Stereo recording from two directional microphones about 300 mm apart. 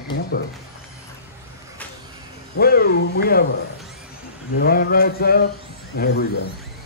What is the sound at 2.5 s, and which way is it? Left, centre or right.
Speech, left.